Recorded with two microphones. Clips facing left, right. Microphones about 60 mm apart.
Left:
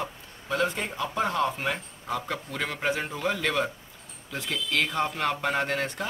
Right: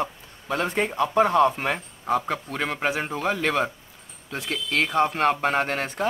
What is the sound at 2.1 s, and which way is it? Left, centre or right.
Speech, right.